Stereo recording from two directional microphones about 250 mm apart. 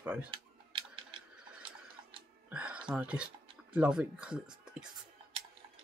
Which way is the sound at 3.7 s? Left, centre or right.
Centre.